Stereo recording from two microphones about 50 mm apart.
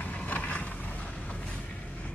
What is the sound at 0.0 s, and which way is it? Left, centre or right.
Vehicle, left.